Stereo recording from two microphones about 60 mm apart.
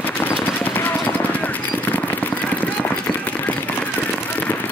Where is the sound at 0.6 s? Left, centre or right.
Left.